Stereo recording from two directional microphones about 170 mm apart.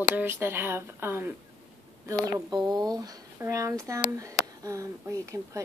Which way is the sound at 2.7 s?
25° right (ahead or behind).